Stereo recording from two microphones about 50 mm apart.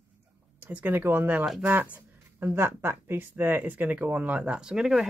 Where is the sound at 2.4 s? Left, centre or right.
Right.